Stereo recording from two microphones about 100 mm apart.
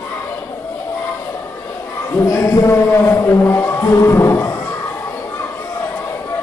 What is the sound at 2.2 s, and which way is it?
Speech, 35° left (ahead or behind).